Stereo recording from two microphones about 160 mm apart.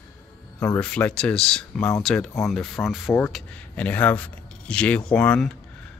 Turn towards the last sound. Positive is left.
turn(degrees=5)  # may be behind; listen again after turning